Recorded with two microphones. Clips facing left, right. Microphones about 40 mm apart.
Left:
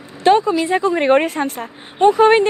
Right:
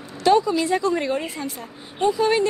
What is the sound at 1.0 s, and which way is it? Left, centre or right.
A woman's voice, left.